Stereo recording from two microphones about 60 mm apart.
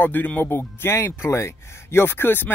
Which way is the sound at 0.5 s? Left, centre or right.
Left.